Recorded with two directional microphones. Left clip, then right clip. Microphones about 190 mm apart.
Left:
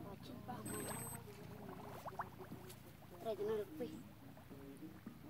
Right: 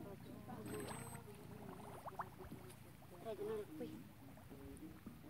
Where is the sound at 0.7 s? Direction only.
10° left (ahead or behind).